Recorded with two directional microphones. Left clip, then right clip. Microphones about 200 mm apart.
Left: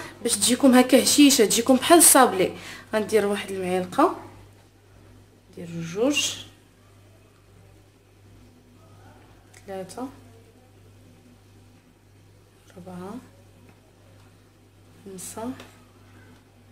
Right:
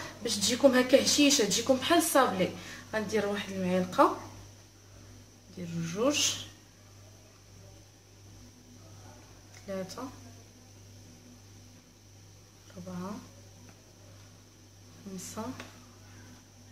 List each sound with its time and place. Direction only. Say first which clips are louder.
0.0 s speech: left 6 dB; 45° left (ahead or behind)
5.8 s speech: left 5 dB; 25° left (ahead or behind)
9.7 s speech: left 3 dB; 20° left (ahead or behind)
15.4 s speech: left 6 dB; 20° left (ahead or behind)